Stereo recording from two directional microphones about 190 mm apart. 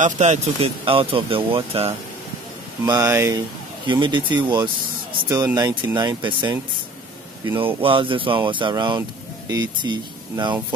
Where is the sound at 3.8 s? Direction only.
25° right (ahead or behind).